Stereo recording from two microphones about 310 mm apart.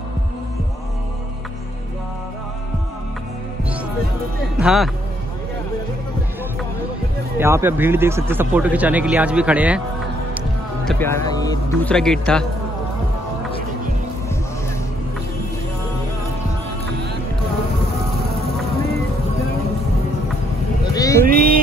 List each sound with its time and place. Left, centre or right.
4.6 s speech: centre
7.3 s speech: centre
10.9 s speech: centre
20.9 s vehicle: centre
21.3 s mantra: right